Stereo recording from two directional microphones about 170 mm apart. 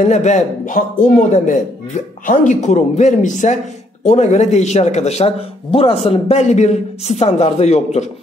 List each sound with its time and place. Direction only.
0.0 s a man's voice: 45° left (ahead or behind)